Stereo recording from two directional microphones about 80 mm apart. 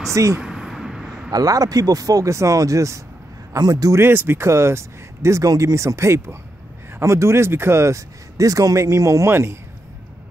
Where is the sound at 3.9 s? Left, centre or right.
Right.